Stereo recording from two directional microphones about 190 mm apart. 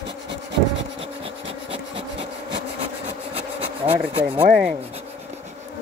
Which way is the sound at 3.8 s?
30° right (ahead or behind).